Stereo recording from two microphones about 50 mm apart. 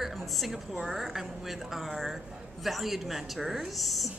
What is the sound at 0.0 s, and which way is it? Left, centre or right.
A woman's voice, centre.